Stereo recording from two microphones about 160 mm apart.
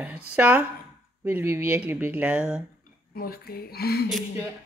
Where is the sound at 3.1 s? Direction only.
70° left (ahead or behind).